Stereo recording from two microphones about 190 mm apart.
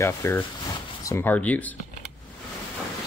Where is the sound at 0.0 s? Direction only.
15° left (ahead or behind).